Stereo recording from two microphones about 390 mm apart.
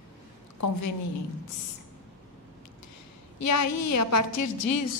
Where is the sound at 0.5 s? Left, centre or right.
Left.